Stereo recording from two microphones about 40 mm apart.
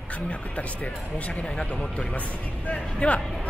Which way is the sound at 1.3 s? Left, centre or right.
Centre.